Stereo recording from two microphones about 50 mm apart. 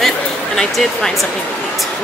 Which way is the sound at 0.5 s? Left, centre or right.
Centre.